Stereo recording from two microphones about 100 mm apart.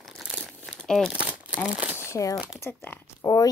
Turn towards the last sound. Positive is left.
turn(degrees=35)  # may be behind; listen again after turning